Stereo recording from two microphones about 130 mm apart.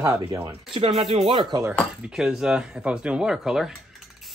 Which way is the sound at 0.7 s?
45° right (ahead or behind).